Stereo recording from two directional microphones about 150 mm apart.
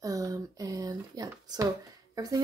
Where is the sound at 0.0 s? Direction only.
20° right (ahead or behind).